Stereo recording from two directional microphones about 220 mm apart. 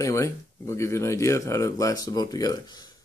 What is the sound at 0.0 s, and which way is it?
Speech, 15° left (ahead or behind).